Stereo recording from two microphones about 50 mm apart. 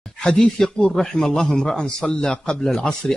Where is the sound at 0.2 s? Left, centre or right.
Centre.